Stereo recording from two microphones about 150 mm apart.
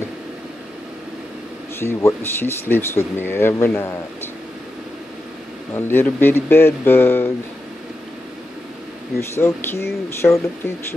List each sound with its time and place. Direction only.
1.8 s speech: 15° left (ahead or behind)
5.8 s speech: 15° left (ahead or behind)
9.2 s speech: 15° left (ahead or behind)